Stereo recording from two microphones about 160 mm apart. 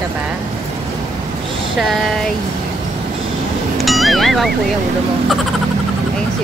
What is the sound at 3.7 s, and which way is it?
Music, centre (ahead or behind).